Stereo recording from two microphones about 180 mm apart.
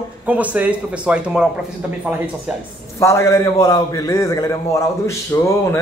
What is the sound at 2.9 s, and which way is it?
A man's voice, 15° left (ahead or behind).